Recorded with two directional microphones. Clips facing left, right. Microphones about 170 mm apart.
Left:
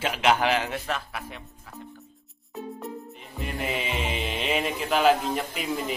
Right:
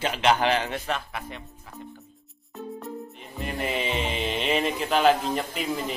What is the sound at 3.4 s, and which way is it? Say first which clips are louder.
Speech: right 2 dB; 5° left (ahead or behind).